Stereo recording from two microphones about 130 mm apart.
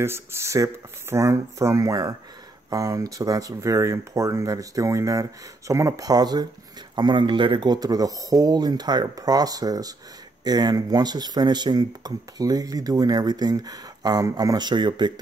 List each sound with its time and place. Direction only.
0.0 s speech: 20° right (ahead or behind); by 15.1 s 35° right (ahead or behind)